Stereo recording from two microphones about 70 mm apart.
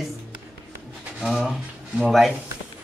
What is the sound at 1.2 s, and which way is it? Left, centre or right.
Speech, centre.